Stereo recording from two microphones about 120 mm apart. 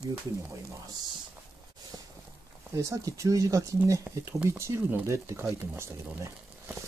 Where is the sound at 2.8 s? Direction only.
25° right (ahead or behind).